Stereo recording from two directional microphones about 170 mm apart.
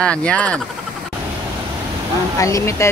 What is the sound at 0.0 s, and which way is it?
Speech, 5° left (ahead or behind).